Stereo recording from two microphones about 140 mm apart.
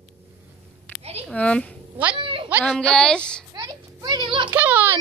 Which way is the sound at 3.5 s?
30° right (ahead or behind).